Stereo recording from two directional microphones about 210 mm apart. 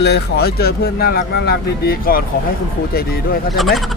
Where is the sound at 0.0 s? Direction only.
50° left (ahead or behind).